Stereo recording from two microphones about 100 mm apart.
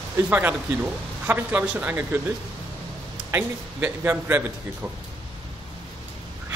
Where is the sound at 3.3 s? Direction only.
15° right (ahead or behind).